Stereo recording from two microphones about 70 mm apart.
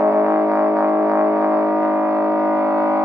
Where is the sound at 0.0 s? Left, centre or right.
Right.